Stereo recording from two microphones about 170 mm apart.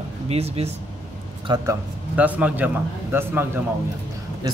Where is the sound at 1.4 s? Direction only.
25° right (ahead or behind).